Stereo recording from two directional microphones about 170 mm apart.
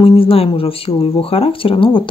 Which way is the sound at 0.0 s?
35° left (ahead or behind).